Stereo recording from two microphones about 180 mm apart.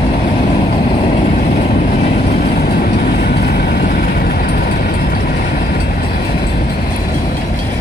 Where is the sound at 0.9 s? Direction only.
40° left (ahead or behind); by 6.8 s 55° left (ahead or behind).